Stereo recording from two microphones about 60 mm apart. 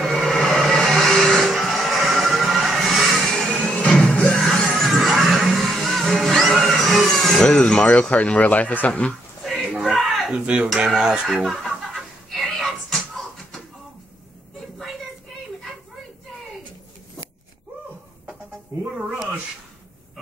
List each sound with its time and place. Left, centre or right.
0.0 s music: centre
3.3 s music: centre
7.4 s speech: centre
9.8 s a sound: centre
10.4 s speech: right
10.9 s chicken: centre